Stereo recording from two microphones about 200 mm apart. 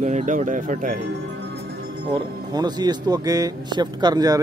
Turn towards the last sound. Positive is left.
turn(degrees=-20)  # may be behind; listen again after turning